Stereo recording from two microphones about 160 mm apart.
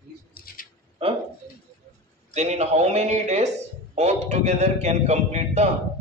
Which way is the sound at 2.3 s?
45° right (ahead or behind).